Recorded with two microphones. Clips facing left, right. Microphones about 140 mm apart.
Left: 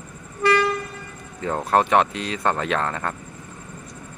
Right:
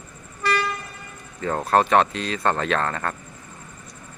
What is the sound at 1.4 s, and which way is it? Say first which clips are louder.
Speech: even; 15° left (ahead or behind).